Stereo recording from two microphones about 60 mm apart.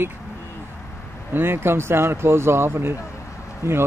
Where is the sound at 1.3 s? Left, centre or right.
Right.